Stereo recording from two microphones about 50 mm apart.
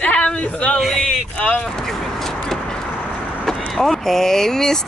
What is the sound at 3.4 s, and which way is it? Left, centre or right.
Speech, centre.